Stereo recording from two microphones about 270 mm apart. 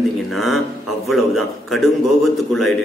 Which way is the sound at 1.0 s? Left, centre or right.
Centre.